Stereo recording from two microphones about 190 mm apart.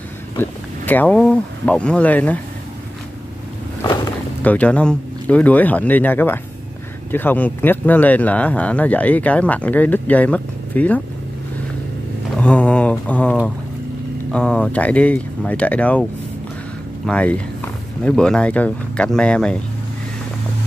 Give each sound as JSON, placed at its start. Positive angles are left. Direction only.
{"t": 0.4, "sound": "speech", "side_deg": 10}
{"t": 3.8, "sound": "boat", "side_deg": 20}
{"t": 4.4, "sound": "speech", "side_deg": 5}
{"t": 12.4, "sound": "speech", "side_deg": 5}